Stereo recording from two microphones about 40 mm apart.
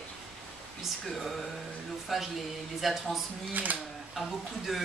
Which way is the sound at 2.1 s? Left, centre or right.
Centre.